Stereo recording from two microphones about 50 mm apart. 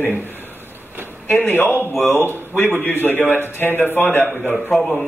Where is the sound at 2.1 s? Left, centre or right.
Right.